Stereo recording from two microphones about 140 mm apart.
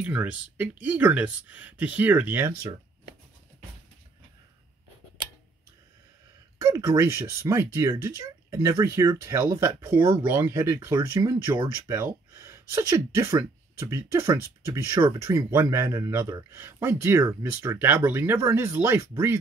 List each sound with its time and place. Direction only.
0.0 s speech: 10° right (ahead or behind)
6.6 s speech: 20° right (ahead or behind)